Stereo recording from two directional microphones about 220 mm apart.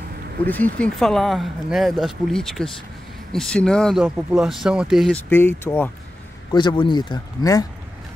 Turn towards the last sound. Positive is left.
turn(degrees=15)  # may be behind; listen again after turning